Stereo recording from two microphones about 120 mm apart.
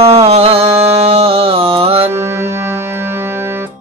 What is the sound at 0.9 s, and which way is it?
Music, 55° right (ahead or behind).